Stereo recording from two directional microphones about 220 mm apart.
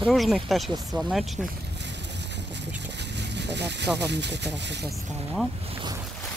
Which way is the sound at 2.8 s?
50° right (ahead or behind).